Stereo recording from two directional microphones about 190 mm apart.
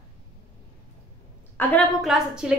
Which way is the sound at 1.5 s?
5° left (ahead or behind).